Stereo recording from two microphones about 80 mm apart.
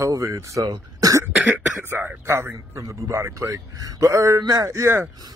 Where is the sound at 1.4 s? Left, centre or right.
Right.